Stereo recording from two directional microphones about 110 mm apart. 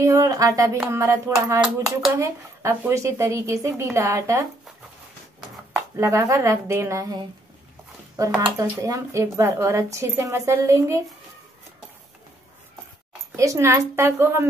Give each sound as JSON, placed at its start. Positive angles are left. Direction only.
{"t": 0.0, "sound": "speech", "side_deg": -30}
{"t": 1.6, "sound": "speech", "side_deg": -5}
{"t": 2.1, "sound": "speech", "side_deg": -25}
{"t": 5.9, "sound": "speech", "side_deg": -25}
{"t": 8.2, "sound": "speech", "side_deg": -30}
{"t": 13.4, "sound": "speech", "side_deg": -30}